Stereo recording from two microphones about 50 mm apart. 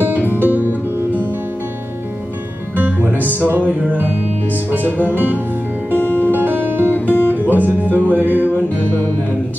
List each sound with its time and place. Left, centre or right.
0.1 s music: left
0.4 s music: right
2.7 s music: right
5.9 s music: left
6.3 s music: right
6.9 s music: left
7.5 s music: right
7.9 s music: left
8.2 s music: right
8.8 s music: left